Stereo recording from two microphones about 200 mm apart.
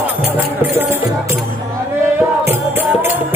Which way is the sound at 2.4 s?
10° right (ahead or behind).